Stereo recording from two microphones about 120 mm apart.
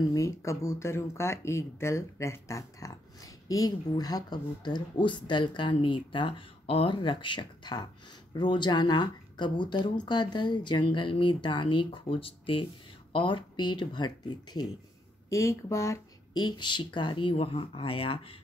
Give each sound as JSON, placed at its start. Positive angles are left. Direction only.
{"t": 0.1, "sound": "speech", "side_deg": 25}
{"t": 15.2, "sound": "speech", "side_deg": 25}